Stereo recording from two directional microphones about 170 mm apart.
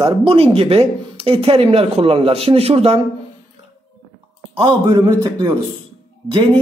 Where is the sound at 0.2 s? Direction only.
35° right (ahead or behind).